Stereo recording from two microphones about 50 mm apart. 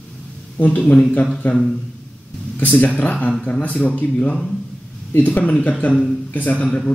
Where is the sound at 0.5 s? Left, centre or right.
Left.